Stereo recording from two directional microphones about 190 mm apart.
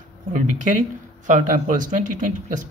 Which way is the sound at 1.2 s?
45° right (ahead or behind).